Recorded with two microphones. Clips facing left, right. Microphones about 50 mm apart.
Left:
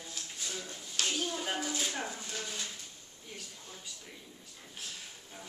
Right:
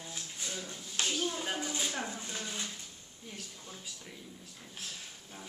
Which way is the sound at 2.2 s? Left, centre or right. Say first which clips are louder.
Even; right.